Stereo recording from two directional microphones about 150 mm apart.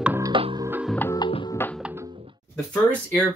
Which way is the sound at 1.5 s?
15° left (ahead or behind).